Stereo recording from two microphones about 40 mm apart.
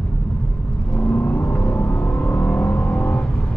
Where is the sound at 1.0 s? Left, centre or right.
Left.